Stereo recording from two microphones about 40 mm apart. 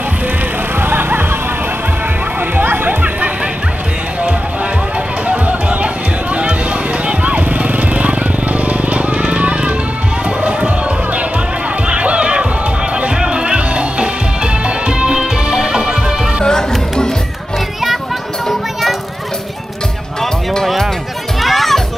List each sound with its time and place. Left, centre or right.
0.7 s music: right
2.5 s music: right
5.2 s chatter: right
7.1 s vehicle: right
11.9 s music: right
18.5 s music: centre
20.6 s music: centre